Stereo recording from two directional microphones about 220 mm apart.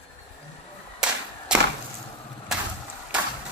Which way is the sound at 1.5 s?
5° right (ahead or behind).